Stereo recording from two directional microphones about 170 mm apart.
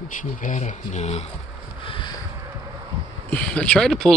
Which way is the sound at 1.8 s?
30° left (ahead or behind).